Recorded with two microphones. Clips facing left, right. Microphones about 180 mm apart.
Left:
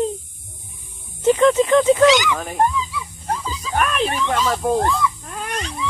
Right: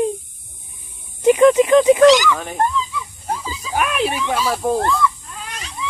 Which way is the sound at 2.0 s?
Centre (ahead or behind).